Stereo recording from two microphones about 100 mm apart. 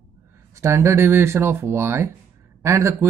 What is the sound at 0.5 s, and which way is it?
Speech, 30° right (ahead or behind).